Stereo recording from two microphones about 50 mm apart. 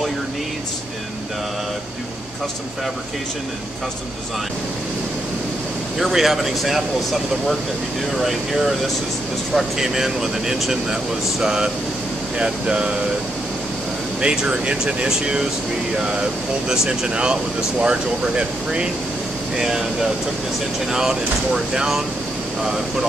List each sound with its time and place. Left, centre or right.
5.9 s speech: centre
14.2 s speech: centre
16.6 s speech: centre
20.9 s speech: centre